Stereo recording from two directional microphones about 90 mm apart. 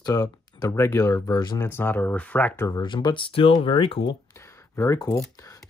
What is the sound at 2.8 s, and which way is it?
Speech, 60° left (ahead or behind).